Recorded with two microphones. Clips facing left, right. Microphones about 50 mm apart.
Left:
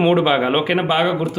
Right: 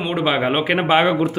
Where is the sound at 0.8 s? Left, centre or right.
Right.